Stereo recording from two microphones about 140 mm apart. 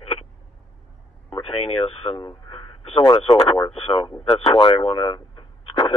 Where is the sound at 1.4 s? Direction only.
45° left (ahead or behind).